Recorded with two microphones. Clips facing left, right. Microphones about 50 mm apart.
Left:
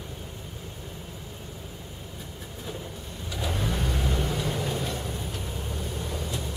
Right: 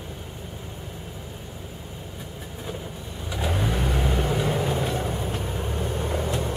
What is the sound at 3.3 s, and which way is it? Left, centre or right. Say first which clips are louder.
Vehicle: right 4 dB; right.